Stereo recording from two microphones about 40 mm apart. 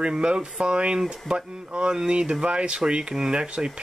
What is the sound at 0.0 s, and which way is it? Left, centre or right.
Speech, right.